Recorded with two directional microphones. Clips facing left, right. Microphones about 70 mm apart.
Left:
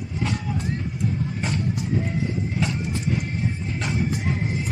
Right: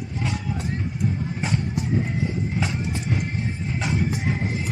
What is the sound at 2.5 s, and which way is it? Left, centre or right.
Music, centre.